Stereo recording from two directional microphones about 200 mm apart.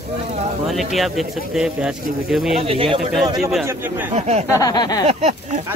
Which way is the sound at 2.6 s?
30° right (ahead or behind).